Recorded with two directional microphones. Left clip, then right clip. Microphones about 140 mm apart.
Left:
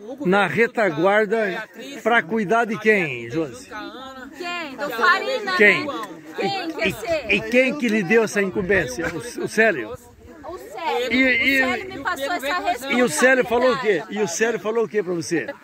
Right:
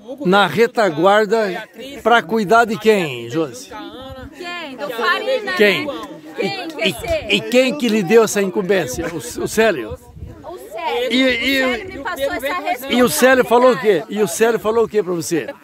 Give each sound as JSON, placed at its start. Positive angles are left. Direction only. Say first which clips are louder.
{"t": 0.2, "sound": "a man's voice", "louder": "right 5 dB", "side_deg": -20}
{"t": 4.5, "sound": "a woman's voice", "louder": "right 1 dB", "side_deg": 5}
{"t": 5.6, "sound": "a man's voice", "louder": "even", "side_deg": -25}
{"t": 5.9, "sound": "speech", "louder": "right 2 dB", "side_deg": -5}
{"t": 6.7, "sound": "speech", "louder": "right 4 dB", "side_deg": -20}
{"t": 7.0, "sound": "speech", "louder": "right 3 dB", "side_deg": 10}
{"t": 7.2, "sound": "a man's voice", "louder": "right 3 dB", "side_deg": -25}
{"t": 11.1, "sound": "speech", "louder": "right 1 dB", "side_deg": -30}
{"t": 11.6, "sound": "speech", "louder": "right 3 dB", "side_deg": 10}
{"t": 12.8, "sound": "speech", "louder": "right 5 dB", "side_deg": -35}